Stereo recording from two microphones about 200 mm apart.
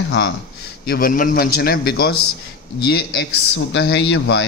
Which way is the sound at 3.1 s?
60° left (ahead or behind).